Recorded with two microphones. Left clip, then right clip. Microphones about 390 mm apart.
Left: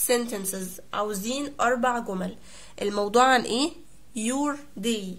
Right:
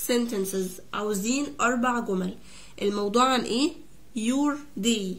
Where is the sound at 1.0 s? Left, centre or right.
Left.